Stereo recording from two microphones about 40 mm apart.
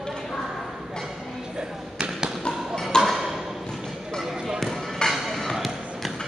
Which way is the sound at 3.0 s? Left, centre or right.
Centre.